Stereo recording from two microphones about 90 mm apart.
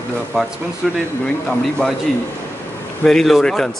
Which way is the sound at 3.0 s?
5° left (ahead or behind).